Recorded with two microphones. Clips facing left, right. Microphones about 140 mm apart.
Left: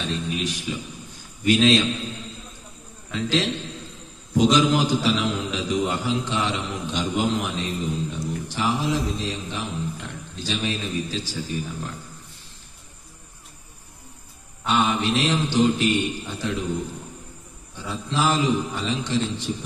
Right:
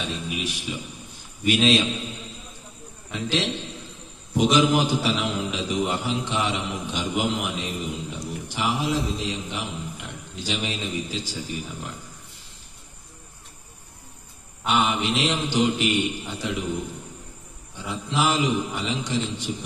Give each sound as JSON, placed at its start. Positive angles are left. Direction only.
{"t": 0.0, "sound": "a man's voice", "side_deg": -10}
{"t": 0.7, "sound": "a man's voice", "side_deg": -20}
{"t": 3.1, "sound": "a man's voice", "side_deg": -15}
{"t": 8.3, "sound": "a sound", "side_deg": -15}
{"t": 9.3, "sound": "a man's voice", "side_deg": -15}
{"t": 14.6, "sound": "a man's voice", "side_deg": -15}
{"t": 17.8, "sound": "a man's voice", "side_deg": -15}